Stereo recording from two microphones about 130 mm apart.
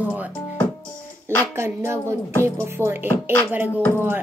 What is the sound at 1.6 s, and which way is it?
Speech, 20° right (ahead or behind).